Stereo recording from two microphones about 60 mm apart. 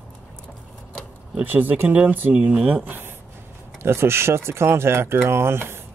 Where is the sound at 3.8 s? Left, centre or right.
Right.